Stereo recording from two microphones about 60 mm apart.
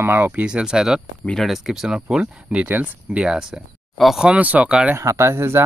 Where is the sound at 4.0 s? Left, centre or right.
Centre.